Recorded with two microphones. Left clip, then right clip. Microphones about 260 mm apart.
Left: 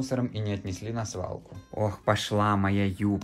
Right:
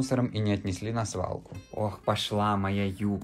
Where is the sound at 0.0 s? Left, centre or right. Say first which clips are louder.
Right 2 dB; centre.